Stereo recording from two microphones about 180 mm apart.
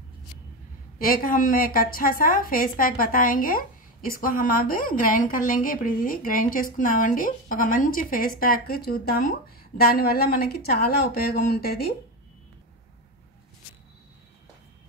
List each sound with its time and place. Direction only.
0.9 s a woman's voice: 50° left (ahead or behind)